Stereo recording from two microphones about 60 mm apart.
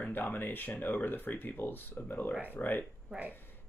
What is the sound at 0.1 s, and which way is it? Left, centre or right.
Speech, left.